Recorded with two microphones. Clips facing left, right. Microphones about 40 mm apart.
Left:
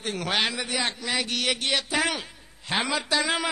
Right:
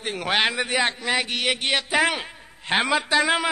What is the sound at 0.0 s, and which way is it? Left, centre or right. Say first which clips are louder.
Speech: right 4 dB; right.